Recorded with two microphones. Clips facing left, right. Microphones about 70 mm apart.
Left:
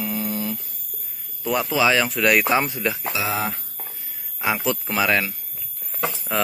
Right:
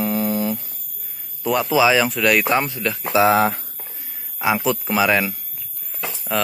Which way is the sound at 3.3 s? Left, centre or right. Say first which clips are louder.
Right 8 dB; right.